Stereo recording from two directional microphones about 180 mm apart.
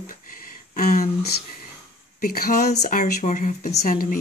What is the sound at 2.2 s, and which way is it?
Speech, 55° left (ahead or behind).